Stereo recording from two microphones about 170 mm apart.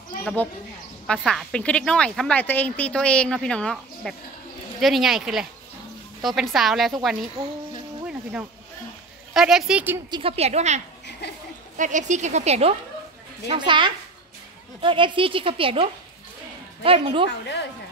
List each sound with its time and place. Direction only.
0.2 s speech: 5° left (ahead or behind)
8.1 s a sound: 5° right (ahead or behind)
9.3 s speech: centre (ahead or behind)
10.1 s a woman's voice: 35° right (ahead or behind)
13.5 s a woman's voice: 30° right (ahead or behind)